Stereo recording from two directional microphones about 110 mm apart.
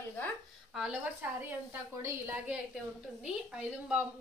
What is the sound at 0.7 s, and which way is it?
Speech, 10° right (ahead or behind).